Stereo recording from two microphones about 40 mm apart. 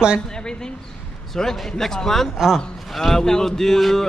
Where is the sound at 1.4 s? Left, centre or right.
Centre.